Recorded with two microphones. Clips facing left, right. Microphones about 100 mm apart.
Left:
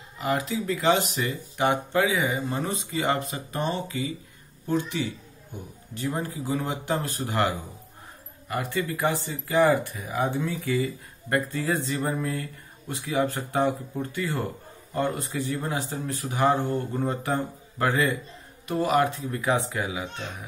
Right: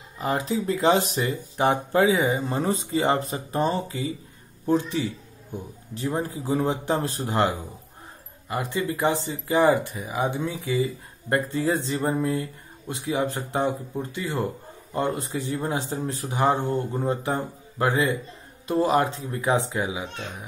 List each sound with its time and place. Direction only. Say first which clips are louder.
0.2 s speech: right 1 dB; 30° right (ahead or behind)